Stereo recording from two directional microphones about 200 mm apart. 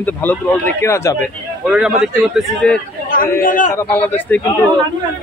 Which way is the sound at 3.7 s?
10° left (ahead or behind).